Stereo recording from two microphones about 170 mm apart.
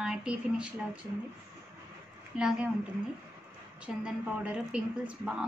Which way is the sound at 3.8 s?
5° right (ahead or behind).